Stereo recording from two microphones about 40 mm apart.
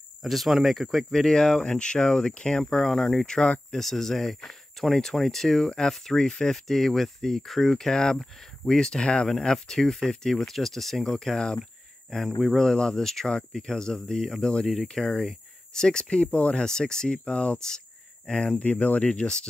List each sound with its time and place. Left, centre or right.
0.2 s speech: centre
1.3 s speech: centre
2.9 s speech: centre
12.1 s speech: centre
12.7 s speech: centre
15.7 s speech: centre
16.6 s speech: centre
17.6 s a sound: centre
18.6 s speech: left
19.0 s speech: left